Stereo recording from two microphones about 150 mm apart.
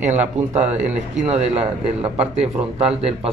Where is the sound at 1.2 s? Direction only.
45° right (ahead or behind).